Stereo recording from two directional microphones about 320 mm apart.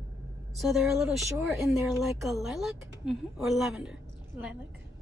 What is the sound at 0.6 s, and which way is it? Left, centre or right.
Speech, centre.